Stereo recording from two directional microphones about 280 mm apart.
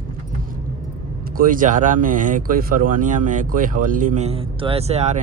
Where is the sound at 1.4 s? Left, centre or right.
Right.